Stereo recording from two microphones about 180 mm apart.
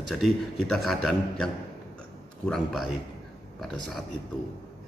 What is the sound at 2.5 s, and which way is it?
Speech, centre (ahead or behind).